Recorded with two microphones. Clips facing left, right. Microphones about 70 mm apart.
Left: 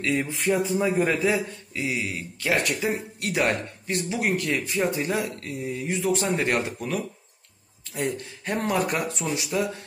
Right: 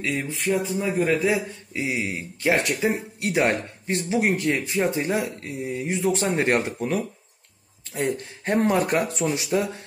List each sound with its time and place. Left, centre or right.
0.0 s speech: centre
1.3 s speech: centre; by 9.8 s right